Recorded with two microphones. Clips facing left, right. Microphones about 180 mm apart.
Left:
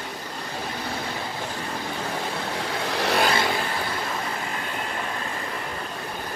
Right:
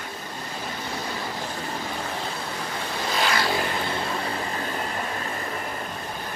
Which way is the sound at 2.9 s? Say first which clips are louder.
Left 5 dB; 70° left (ahead or behind).